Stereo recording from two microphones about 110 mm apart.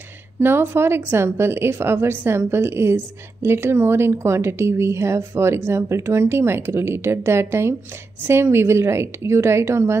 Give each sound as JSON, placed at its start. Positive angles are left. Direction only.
{"t": 0.4, "sound": "a woman's voice", "side_deg": -20}